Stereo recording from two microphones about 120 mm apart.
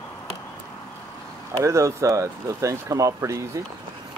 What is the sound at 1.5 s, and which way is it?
Speech, 25° right (ahead or behind).